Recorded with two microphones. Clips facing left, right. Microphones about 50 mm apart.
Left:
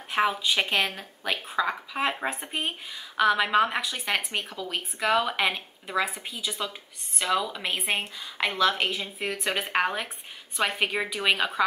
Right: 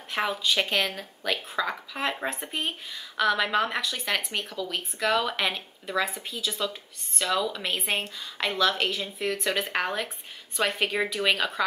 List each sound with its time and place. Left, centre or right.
0.1 s speech: centre